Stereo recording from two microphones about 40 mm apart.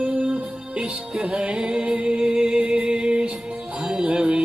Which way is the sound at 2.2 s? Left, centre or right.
Centre.